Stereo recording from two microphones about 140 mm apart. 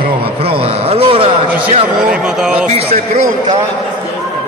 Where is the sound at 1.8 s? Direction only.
5° right (ahead or behind).